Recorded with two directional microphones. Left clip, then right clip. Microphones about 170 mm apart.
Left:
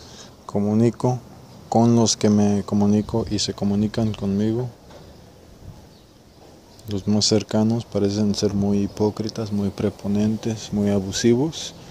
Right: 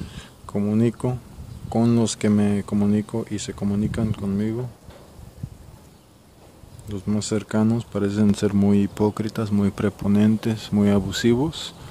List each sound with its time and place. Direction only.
0.0 s a sound: 15° right (ahead or behind)
0.7 s speech: 5° right (ahead or behind)
7.3 s speech: 5° left (ahead or behind)
8.1 s speech: 40° right (ahead or behind)
8.5 s speech: 15° right (ahead or behind)